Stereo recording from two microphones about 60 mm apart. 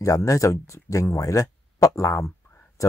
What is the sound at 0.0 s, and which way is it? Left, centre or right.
Speech, left.